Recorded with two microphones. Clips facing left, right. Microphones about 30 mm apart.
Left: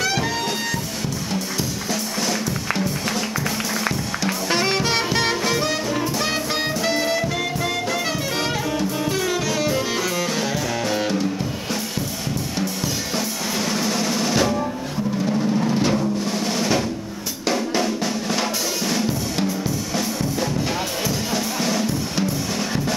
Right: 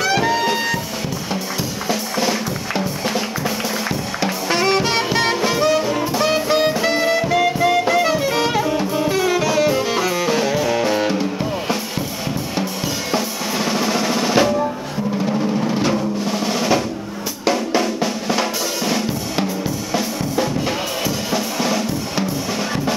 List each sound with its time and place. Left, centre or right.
0.0 s music: centre
1.9 s drum kit: centre
4.5 s music: centre
13.1 s drum: centre
15.2 s music: centre
17.5 s drum: centre
21.3 s music: centre